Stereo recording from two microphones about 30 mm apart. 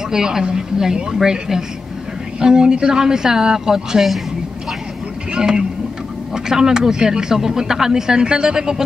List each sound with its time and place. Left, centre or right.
0.1 s speech: centre
5.3 s speech: right